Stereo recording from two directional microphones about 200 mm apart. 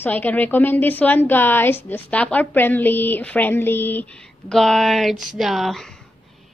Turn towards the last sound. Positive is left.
turn(degrees=0)  # may be behind; listen again after turning